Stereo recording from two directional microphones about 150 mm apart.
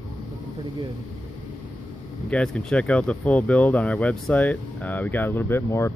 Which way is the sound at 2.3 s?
5° left (ahead or behind).